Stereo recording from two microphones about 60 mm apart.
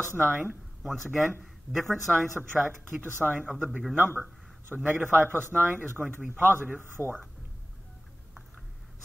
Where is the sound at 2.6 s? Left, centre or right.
Right.